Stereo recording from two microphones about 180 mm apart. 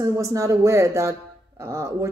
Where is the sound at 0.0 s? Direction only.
20° right (ahead or behind).